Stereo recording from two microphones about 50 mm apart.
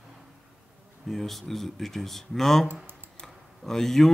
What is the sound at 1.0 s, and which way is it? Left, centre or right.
Speech, centre.